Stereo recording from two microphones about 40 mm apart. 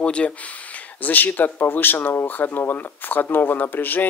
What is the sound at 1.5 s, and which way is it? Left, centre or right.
Speech, left.